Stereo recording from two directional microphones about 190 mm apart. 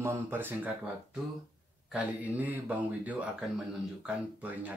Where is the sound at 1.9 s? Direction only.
10° right (ahead or behind).